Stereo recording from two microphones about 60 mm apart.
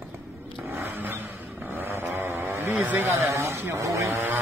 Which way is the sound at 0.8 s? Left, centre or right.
Right.